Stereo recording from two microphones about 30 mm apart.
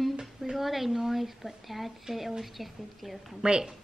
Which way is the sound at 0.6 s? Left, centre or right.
Centre.